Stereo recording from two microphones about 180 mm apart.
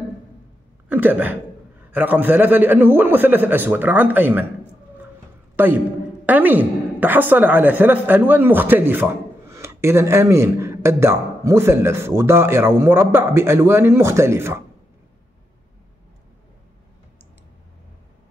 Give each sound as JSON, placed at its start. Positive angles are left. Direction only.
{"t": 0.8, "sound": "a woman's voice", "side_deg": -10}
{"t": 6.2, "sound": "a woman's voice", "side_deg": -10}